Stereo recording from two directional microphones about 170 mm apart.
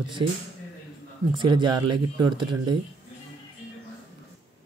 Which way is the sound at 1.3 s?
30° right (ahead or behind).